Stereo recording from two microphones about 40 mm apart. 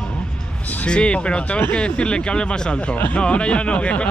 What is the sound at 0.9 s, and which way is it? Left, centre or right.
Speech, left.